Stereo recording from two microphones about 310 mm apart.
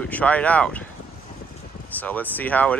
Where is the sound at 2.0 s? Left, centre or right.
Centre.